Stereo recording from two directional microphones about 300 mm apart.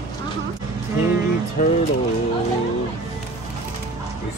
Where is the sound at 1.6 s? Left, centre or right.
Left.